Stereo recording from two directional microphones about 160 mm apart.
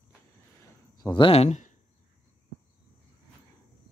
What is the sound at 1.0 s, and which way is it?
Speech, 30° left (ahead or behind).